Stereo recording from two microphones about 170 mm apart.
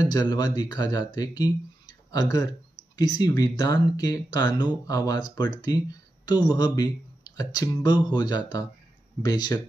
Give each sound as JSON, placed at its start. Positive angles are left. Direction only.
{"t": 0.0, "sound": "speech", "side_deg": 25}